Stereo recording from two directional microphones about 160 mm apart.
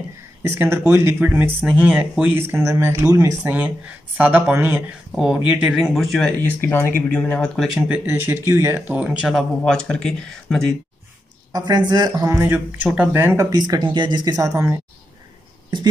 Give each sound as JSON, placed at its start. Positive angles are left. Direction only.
{"t": 0.4, "sound": "speech", "side_deg": -15}
{"t": 11.5, "sound": "speech", "side_deg": -25}
{"t": 12.8, "sound": "speech", "side_deg": -5}
{"t": 13.5, "sound": "speech", "side_deg": -25}